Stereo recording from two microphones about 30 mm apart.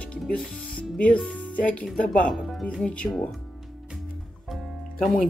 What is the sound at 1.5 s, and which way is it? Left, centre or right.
Speech, left.